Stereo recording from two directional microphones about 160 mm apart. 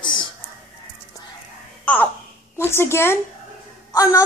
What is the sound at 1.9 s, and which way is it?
A woman's voice, 10° left (ahead or behind).